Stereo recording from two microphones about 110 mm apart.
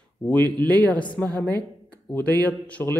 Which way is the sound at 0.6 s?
15° left (ahead or behind).